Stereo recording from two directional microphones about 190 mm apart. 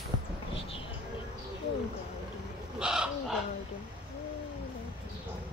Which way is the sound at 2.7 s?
5° right (ahead or behind).